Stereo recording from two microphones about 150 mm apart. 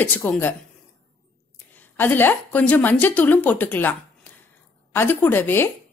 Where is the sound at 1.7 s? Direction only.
10° left (ahead or behind).